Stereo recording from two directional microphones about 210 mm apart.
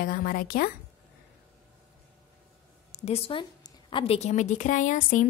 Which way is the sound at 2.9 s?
30° left (ahead or behind).